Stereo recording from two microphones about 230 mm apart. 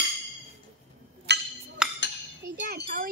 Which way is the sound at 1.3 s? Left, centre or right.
Right.